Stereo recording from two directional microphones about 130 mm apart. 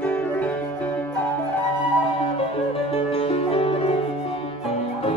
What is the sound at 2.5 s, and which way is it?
Music, 50° left (ahead or behind).